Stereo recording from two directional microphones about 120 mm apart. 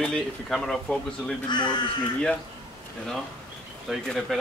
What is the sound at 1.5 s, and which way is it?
Speech, 40° left (ahead or behind).